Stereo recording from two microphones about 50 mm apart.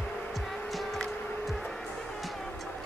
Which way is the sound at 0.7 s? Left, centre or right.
Centre.